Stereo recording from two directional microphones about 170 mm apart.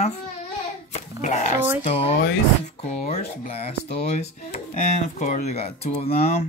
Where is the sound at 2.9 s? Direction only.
40° left (ahead or behind).